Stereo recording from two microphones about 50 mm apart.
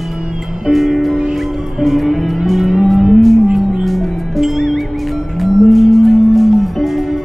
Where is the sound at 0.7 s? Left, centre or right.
Centre.